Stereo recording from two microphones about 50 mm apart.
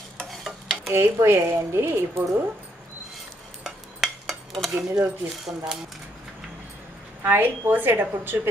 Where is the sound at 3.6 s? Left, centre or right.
Centre.